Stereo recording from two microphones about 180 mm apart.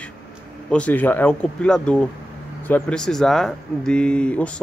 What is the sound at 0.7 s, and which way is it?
Speech, 5° left (ahead or behind).